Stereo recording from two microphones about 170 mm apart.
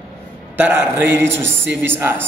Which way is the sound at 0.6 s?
15° right (ahead or behind).